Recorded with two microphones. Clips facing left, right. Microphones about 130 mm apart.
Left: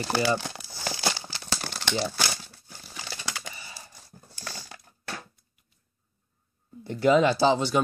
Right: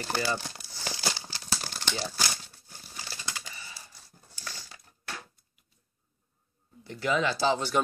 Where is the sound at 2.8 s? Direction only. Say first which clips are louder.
Left 4 dB; 90° left.